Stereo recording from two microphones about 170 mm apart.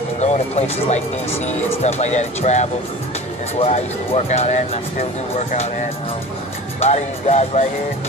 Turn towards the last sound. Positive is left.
turn(degrees=40)  # may be behind; listen again after turning